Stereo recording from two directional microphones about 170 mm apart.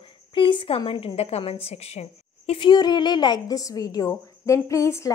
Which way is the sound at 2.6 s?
25° left (ahead or behind).